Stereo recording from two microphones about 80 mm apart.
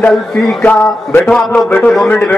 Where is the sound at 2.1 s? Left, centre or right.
Centre.